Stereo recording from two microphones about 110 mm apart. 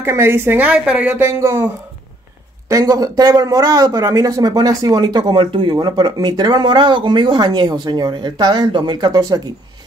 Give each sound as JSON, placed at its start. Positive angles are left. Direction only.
{"t": 0.0, "sound": "a woman's voice", "side_deg": -20}
{"t": 1.2, "sound": "a woman's voice", "side_deg": -25}
{"t": 2.7, "sound": "speech", "side_deg": -35}